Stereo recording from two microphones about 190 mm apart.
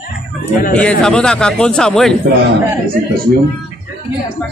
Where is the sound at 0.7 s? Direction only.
5° left (ahead or behind).